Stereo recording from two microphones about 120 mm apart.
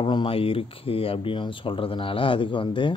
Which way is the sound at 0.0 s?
40° left (ahead or behind).